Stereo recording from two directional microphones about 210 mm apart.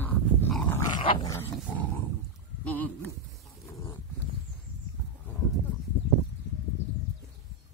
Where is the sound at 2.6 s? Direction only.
5° left (ahead or behind).